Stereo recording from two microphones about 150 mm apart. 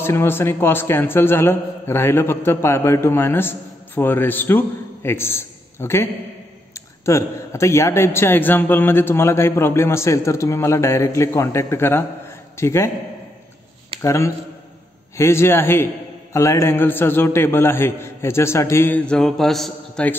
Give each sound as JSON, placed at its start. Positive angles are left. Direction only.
{"t": 0.0, "sound": "a man's voice", "side_deg": 15}
{"t": 14.0, "sound": "a man's voice", "side_deg": 20}